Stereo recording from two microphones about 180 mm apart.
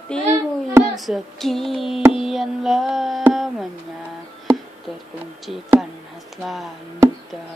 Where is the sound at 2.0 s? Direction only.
5° right (ahead or behind).